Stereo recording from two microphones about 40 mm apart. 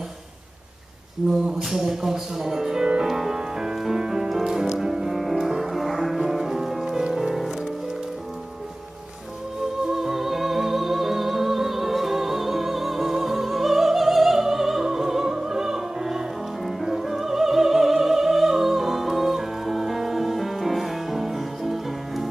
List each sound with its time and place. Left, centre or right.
1.3 s speech: centre
3.1 s music: centre
9.9 s music: centre